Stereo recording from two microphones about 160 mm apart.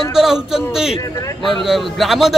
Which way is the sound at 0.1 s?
5° right (ahead or behind).